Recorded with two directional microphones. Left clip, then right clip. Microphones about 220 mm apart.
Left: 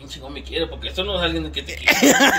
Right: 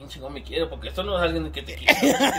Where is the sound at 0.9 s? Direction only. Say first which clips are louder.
Left 1 dB; 20° right (ahead or behind).